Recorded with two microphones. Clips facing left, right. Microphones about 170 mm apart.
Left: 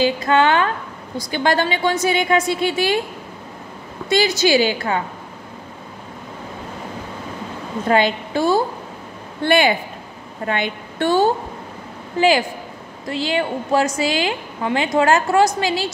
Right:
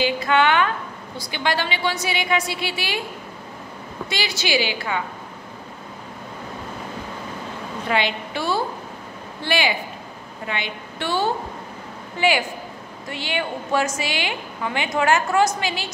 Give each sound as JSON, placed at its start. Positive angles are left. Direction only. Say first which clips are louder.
{"t": 0.0, "sound": "a woman's voice", "louder": "left 3 dB", "side_deg": 40}
{"t": 4.1, "sound": "a woman's voice", "louder": "left 9 dB", "side_deg": 45}
{"t": 7.9, "sound": "a woman's voice", "louder": "left 6 dB", "side_deg": 45}
{"t": 12.2, "sound": "a woman's voice", "louder": "left 5 dB", "side_deg": 35}